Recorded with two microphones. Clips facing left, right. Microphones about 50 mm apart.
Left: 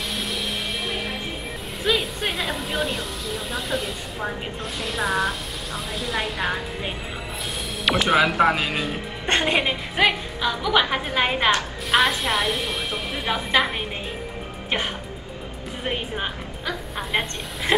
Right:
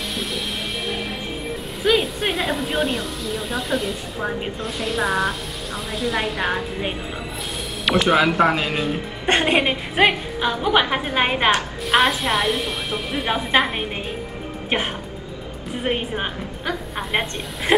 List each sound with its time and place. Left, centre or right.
1.8 s speech: centre
7.8 s speech: centre
9.3 s a woman's voice: centre
11.9 s speech: centre
15.8 s speech: centre
16.9 s speech: centre